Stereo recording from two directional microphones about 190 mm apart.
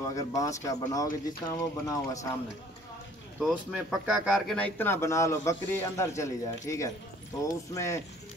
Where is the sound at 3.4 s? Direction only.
5° right (ahead or behind).